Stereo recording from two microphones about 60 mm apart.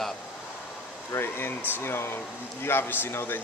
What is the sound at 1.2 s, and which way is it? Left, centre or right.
Speech, left.